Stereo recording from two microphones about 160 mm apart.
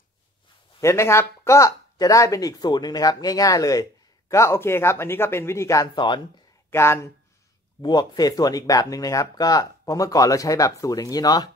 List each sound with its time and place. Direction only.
0.7 s speech: 15° left (ahead or behind)
6.7 s speech: 15° left (ahead or behind)
7.8 s speech: 25° left (ahead or behind)